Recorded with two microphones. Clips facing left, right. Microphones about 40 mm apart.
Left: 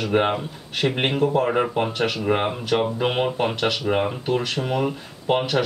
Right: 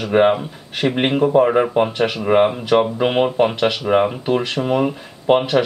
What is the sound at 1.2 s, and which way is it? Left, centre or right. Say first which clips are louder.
Speech: right 7 dB; right.